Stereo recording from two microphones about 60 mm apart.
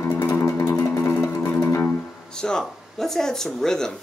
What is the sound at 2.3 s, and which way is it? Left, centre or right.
Speech, centre.